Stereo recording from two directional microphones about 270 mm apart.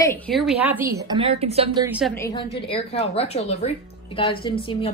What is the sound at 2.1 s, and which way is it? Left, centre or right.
A woman's voice, centre.